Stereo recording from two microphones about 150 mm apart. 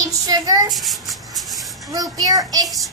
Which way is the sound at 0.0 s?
25° right (ahead or behind).